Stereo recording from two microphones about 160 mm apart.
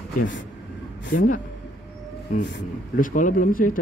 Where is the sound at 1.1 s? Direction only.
55° left (ahead or behind).